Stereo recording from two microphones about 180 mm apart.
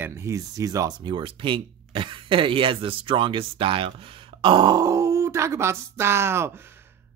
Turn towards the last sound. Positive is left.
turn(degrees=-15)  # may be behind; listen again after turning